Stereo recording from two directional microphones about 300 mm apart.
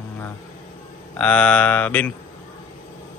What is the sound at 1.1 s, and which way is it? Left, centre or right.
A man's voice, centre.